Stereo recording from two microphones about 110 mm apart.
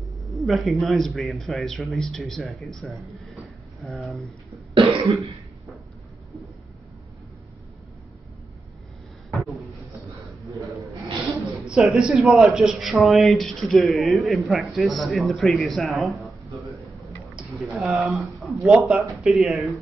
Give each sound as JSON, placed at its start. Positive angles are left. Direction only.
{"t": 0.4, "sound": "a man's voice", "side_deg": 0}
{"t": 4.7, "sound": "cough", "side_deg": -65}
{"t": 11.6, "sound": "a man's voice", "side_deg": -5}
{"t": 17.6, "sound": "a man's voice", "side_deg": 0}